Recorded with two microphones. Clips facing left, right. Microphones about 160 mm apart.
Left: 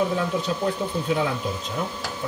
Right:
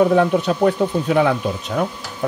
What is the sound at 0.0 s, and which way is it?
Speech, 65° right (ahead or behind).